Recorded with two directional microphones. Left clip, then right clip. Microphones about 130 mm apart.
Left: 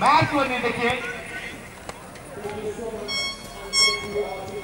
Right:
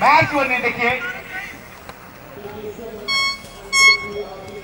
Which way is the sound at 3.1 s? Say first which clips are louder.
Right 12 dB; 25° right (ahead or behind).